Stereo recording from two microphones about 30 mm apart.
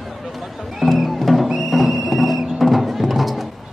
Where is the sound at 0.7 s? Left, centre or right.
Centre.